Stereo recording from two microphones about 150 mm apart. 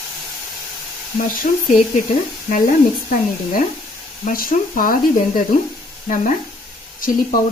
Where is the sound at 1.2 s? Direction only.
65° left (ahead or behind).